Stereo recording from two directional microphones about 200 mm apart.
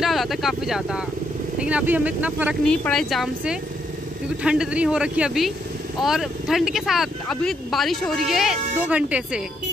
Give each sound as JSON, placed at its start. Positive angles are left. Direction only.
{"t": 0.0, "sound": "speech", "side_deg": 0}
{"t": 2.6, "sound": "speech", "side_deg": 5}